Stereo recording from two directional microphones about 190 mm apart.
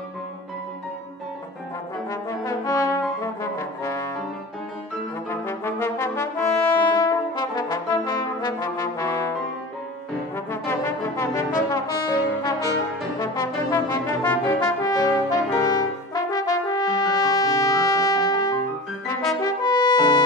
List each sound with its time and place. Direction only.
2.0 s brass instrument: 15° left (ahead or behind)
5.3 s brass instrument: 15° left (ahead or behind)
10.3 s brass instrument: 15° left (ahead or behind)